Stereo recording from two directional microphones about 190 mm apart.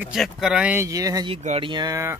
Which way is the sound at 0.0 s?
Centre (ahead or behind).